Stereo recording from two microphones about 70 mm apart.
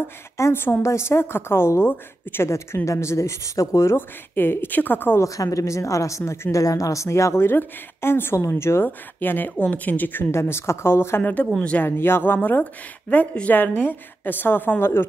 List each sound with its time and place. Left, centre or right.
0.4 s speech: left
2.5 s speech: left
5.2 s speech: left
6.6 s speech: left
8.8 s a woman's voice: left
10.3 s a woman's voice: left